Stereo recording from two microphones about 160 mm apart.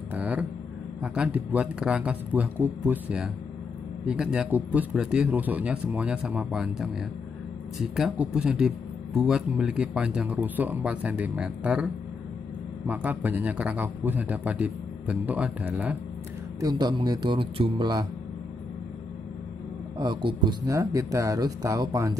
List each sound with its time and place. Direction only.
0.1 s a sound: 10° right (ahead or behind)
1.0 s a man's voice: 5° right (ahead or behind)
16.5 s speech: 25° right (ahead or behind)
20.0 s speech: 30° right (ahead or behind)